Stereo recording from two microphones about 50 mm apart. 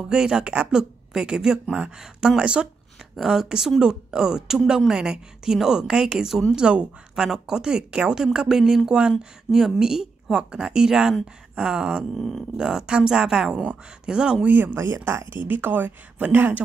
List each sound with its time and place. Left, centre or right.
0.1 s a woman's voice: centre
3.2 s a woman's voice: centre
12.2 s speech: centre
12.5 s a woman's voice: centre
14.5 s speech: right